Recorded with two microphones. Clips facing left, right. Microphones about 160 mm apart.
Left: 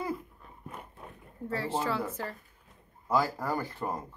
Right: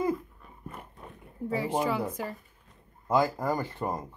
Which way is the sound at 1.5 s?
15° right (ahead or behind).